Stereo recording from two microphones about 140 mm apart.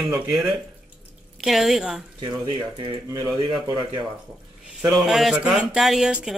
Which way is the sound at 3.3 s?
35° right (ahead or behind).